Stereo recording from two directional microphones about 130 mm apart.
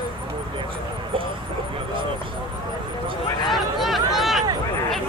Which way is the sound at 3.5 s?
Centre (ahead or behind).